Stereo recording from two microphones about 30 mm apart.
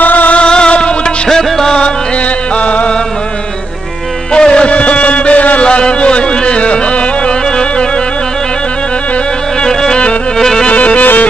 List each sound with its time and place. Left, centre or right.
0.0 s music: left
0.4 s music: left
1.3 s music: centre
4.3 s music: left
5.6 s music: left
10.7 s music: left